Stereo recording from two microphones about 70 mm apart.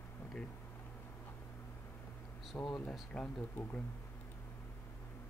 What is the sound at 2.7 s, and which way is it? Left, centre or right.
Speech, centre.